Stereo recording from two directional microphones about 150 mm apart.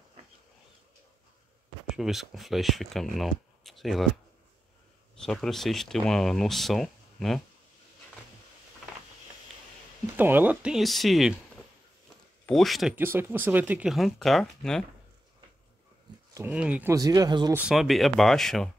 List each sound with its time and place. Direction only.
1.9 s speech: centre (ahead or behind)
5.1 s speech: 5° left (ahead or behind)
10.1 s speech: 10° right (ahead or behind)
12.4 s speech: centre (ahead or behind)
12.9 s speech: 15° right (ahead or behind); by 14.9 s 5° left (ahead or behind)
16.3 s speech: 10° right (ahead or behind)
16.9 s speech: 25° right (ahead or behind)
17.5 s speech: 10° right (ahead or behind)
17.7 s speech: centre (ahead or behind)